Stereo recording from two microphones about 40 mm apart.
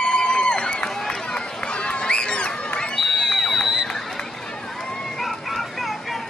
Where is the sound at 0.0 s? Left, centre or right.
Left.